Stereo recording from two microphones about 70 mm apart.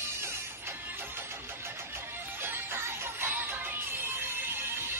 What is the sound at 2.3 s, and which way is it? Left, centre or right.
Music, right.